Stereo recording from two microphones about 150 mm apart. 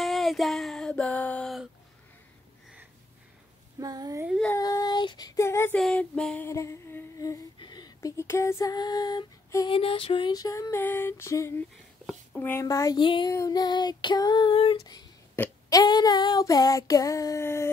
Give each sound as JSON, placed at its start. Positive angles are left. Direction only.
{"t": 0.0, "sound": "a sound", "side_deg": 0}
{"t": 3.8, "sound": "speech", "side_deg": -25}
{"t": 4.6, "sound": "child singing", "side_deg": 25}
{"t": 5.8, "sound": "female singing", "side_deg": 5}
{"t": 9.7, "sound": "female singing", "side_deg": 35}
{"t": 12.1, "sound": "a sound", "side_deg": 5}
{"t": 12.4, "sound": "female singing", "side_deg": 20}
{"t": 15.4, "sound": "a sound", "side_deg": 15}
{"t": 15.7, "sound": "female singing", "side_deg": 25}